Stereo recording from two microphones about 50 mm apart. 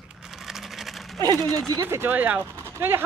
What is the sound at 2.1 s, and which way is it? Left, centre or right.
Speech, right.